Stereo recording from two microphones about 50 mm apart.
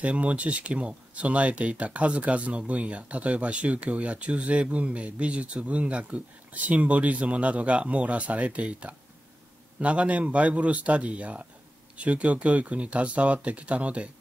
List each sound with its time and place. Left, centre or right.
0.0 s speech: right